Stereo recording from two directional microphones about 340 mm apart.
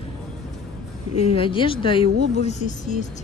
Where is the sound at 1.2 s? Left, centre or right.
Centre.